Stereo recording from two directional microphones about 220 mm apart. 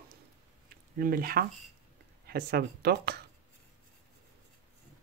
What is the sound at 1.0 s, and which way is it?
Speech, 40° right (ahead or behind).